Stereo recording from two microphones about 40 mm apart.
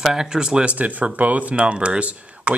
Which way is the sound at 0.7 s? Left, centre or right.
Right.